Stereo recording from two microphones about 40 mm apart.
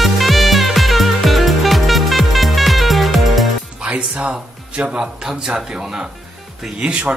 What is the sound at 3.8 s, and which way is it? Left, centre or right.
Music, right.